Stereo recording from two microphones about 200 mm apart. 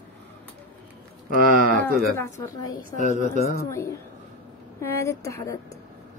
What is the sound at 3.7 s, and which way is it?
Speech, 15° left (ahead or behind).